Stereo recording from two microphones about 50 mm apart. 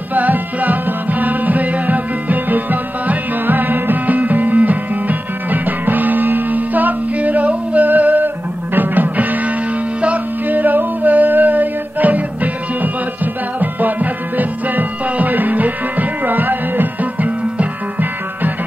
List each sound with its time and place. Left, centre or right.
0.1 s music: right